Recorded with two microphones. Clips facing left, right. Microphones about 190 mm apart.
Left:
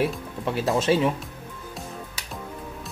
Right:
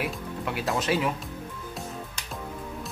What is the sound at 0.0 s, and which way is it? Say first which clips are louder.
Speech: left 5 dB; 30° left (ahead or behind).